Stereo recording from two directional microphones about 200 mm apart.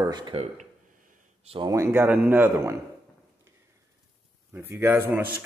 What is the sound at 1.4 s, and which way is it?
Speech, 30° right (ahead or behind).